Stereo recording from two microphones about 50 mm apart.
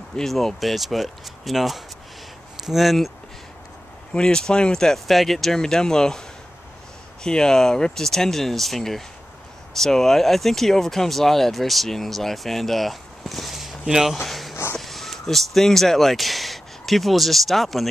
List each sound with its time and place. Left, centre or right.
0.1 s speech: centre
4.1 s speech: centre
5.0 s speech: centre
7.2 s speech: centre
14.1 s speech: centre